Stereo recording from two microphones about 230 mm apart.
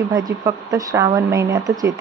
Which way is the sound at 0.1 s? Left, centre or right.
Centre.